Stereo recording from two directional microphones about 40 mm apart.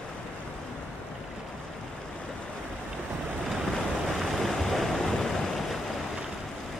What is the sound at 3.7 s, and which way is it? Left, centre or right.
Waves, centre.